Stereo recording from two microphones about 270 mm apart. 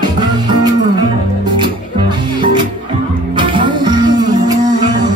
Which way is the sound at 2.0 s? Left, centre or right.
Centre.